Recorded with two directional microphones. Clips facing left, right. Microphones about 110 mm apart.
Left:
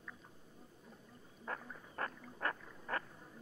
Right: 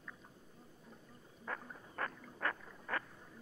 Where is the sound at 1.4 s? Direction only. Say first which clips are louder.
Even; 35° left (ahead or behind).